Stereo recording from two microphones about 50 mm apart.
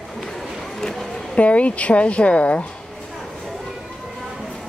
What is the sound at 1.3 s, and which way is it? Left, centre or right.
A woman's voice, left.